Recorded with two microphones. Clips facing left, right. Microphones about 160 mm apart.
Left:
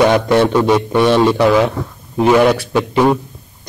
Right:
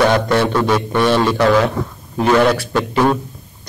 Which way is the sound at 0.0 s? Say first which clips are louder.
Left 3 dB; 15° left (ahead or behind).